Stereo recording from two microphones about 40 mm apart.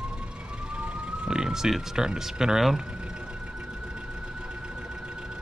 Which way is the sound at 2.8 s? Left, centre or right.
Right.